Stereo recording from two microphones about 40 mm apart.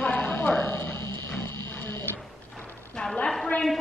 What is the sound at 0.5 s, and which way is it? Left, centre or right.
Dog, left.